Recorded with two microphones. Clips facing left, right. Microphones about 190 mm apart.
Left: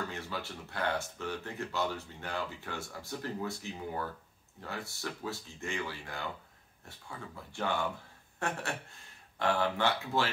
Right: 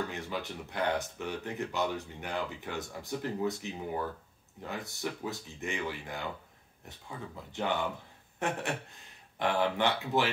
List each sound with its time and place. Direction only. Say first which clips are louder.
0.1 s speech: right 3 dB; 20° right (ahead or behind)